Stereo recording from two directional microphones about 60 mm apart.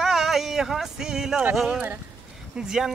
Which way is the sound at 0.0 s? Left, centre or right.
Centre.